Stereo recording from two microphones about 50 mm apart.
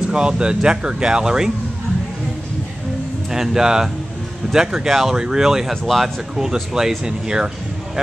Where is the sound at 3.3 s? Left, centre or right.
Centre.